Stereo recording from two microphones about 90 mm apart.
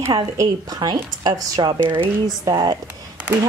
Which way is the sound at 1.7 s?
65° right (ahead or behind).